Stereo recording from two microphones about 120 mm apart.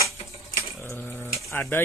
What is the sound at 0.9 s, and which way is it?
Speech, 15° left (ahead or behind).